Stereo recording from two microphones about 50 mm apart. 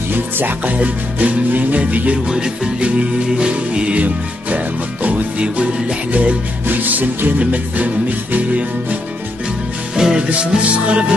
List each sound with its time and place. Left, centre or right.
0.1 s music: right
0.7 s music: right
2.2 s music: centre
9.9 s music: centre